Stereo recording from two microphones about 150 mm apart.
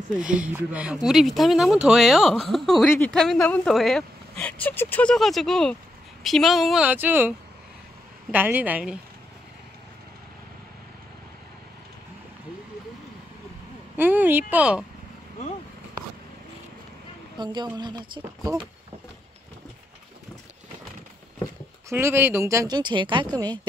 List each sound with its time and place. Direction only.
0.1 s a woman's voice: 5° right (ahead or behind)
13.9 s speech: 10° right (ahead or behind)
17.4 s speech: 30° right (ahead or behind)
21.8 s speech: 15° right (ahead or behind)